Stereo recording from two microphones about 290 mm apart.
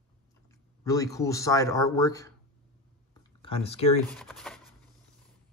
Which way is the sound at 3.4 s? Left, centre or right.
Centre.